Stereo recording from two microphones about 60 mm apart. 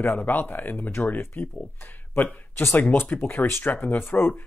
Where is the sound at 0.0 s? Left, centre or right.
Left.